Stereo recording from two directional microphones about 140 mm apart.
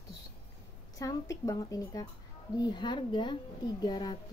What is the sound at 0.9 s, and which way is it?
A child's voice, 25° left (ahead or behind).